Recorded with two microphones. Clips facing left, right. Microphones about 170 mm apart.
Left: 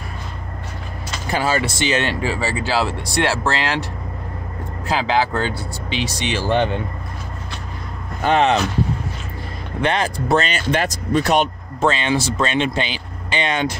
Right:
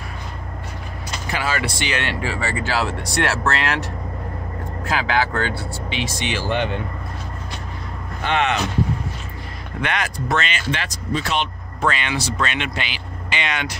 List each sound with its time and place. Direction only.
1.4 s speech: 30° left (ahead or behind)
4.9 s speech: 30° left (ahead or behind)
8.2 s speech: 40° left (ahead or behind)
9.8 s speech: 30° left (ahead or behind)
11.8 s speech: 30° left (ahead or behind)